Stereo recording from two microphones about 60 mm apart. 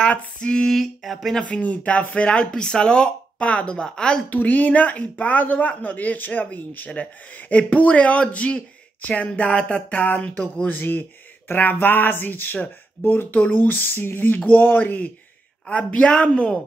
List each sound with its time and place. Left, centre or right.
0.0 s a man's voice: centre
0.7 s a sound: centre
1.5 s speech: left
4.3 s a man's voice: left